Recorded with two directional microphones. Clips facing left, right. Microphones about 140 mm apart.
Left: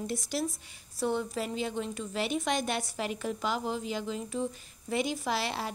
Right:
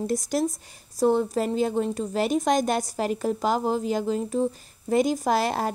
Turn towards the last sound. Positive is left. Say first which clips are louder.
# right 9 dB
turn(degrees=-45)  # may be behind; listen again after turning